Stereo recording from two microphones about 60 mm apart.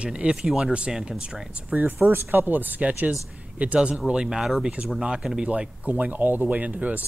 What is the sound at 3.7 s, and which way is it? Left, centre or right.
Speech, centre.